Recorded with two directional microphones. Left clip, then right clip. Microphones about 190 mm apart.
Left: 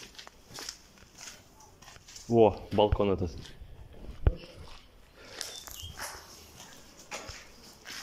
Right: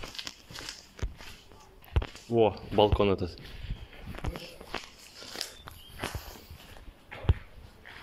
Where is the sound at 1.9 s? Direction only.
10° right (ahead or behind).